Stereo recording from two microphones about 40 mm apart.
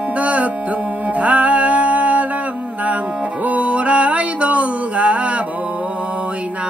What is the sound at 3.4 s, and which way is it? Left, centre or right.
Music, right.